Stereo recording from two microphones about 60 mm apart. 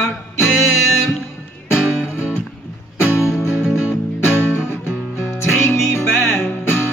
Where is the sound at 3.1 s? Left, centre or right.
Left.